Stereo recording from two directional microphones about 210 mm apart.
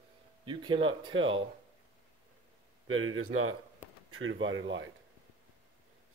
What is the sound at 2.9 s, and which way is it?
Speech, 80° right.